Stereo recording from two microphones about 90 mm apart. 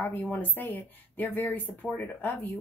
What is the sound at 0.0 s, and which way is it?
Speech, 20° left (ahead or behind).